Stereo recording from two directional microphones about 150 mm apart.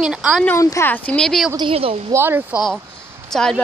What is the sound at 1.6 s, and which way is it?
Speech, 40° right (ahead or behind).